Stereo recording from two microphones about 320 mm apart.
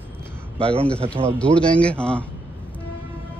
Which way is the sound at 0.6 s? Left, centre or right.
Centre.